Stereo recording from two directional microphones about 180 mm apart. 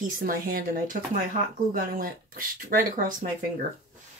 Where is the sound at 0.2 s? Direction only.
55° right (ahead or behind).